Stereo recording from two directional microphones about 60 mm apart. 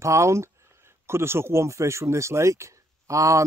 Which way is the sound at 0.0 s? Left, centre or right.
Right.